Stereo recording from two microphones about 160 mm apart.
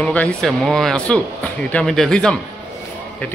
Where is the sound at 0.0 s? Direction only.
10° left (ahead or behind).